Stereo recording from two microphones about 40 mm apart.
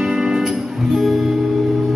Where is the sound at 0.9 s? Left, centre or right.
Centre.